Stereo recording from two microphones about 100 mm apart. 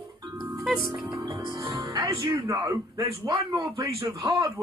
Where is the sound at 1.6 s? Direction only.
40° right (ahead or behind).